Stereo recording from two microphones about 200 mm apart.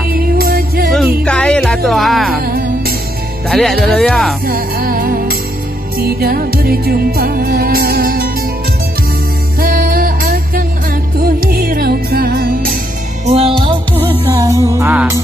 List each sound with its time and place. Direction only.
0.1 s music: 50° right (ahead or behind)
0.9 s music: 5° left (ahead or behind)
2.4 s music: 45° right (ahead or behind)
3.4 s speech: centre (ahead or behind)
4.5 s music: 45° right (ahead or behind)
9.6 s music: 45° right (ahead or behind)
13.2 s music: 30° right (ahead or behind); by 15.2 s 10° right (ahead or behind)